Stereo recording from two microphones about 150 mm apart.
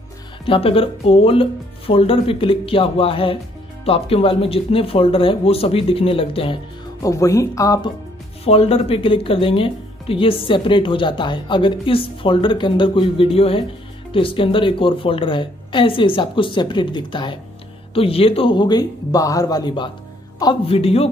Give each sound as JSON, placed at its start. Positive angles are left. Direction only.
{"t": 0.5, "sound": "speech", "side_deg": 40}
{"t": 7.0, "sound": "speech", "side_deg": 20}
{"t": 8.5, "sound": "speech", "side_deg": 40}
{"t": 20.6, "sound": "speech", "side_deg": 40}